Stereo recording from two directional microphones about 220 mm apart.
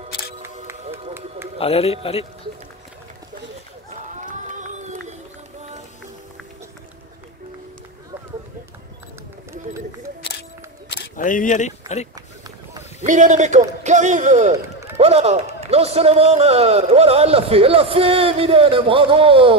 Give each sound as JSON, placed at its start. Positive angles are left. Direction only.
{"t": 1.6, "sound": "speech", "side_deg": 25}
{"t": 4.2, "sound": "run", "side_deg": -35}
{"t": 10.9, "sound": "single-lens reflex camera", "side_deg": 40}
{"t": 13.0, "sound": "a man's voice", "side_deg": -35}